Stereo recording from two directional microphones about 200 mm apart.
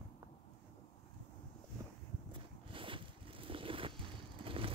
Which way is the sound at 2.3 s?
25° right (ahead or behind).